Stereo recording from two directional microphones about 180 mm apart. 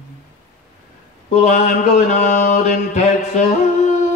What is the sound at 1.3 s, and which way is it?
Mantra, 40° left (ahead or behind).